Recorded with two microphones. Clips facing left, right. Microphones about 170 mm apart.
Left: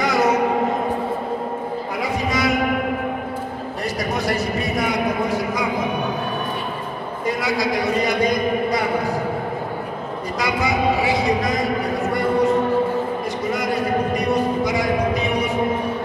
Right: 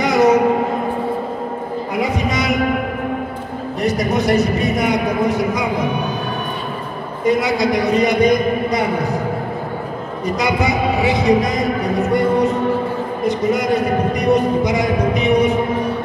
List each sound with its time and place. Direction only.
0.0 s a sound: 20° right (ahead or behind)
3.8 s a man's voice: 20° right (ahead or behind)
7.2 s a man's voice: 20° right (ahead or behind)
10.4 s a man's voice: 20° right (ahead or behind)
14.1 s music: 20° right (ahead or behind)